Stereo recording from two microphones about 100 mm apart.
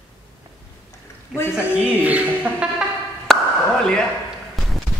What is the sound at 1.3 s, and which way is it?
Speech, 20° left (ahead or behind).